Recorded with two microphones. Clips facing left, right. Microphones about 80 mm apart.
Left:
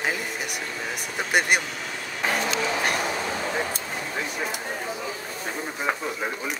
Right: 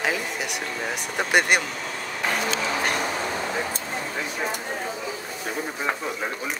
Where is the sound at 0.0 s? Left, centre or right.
Centre.